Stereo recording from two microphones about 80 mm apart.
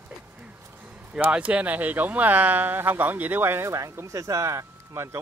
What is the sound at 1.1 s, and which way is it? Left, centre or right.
Speech, centre.